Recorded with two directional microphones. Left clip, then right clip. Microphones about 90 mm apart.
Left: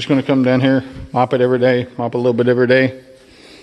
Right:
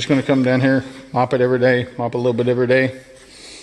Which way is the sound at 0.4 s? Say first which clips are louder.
Left 2 dB; 30° left (ahead or behind).